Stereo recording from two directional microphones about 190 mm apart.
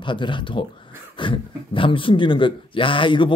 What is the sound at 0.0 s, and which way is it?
Speech, 25° left (ahead or behind).